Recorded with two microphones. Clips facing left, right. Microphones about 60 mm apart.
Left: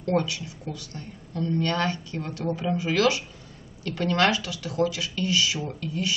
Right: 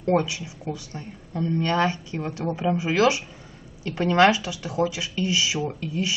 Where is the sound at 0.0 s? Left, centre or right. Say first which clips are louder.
Right 3 dB; right.